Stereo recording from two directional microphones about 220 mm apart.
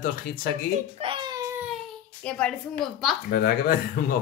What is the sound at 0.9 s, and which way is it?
Baby cry, 25° right (ahead or behind).